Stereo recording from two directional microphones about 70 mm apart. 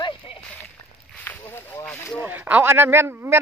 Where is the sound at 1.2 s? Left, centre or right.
Left.